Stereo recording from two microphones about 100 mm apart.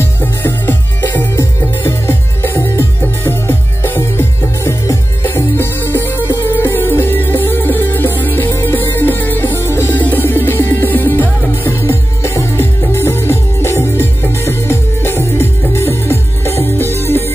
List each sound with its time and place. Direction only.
0.0 s music: 25° left (ahead or behind)